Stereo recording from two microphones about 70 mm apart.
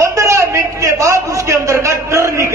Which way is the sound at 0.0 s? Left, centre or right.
Right.